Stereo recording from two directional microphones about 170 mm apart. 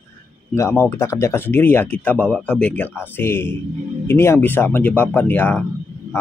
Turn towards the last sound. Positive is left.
turn(degrees=10)  # may be behind; listen again after turning